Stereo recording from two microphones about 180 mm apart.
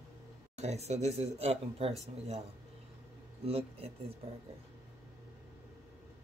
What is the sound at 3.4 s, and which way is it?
Speech, 35° right (ahead or behind).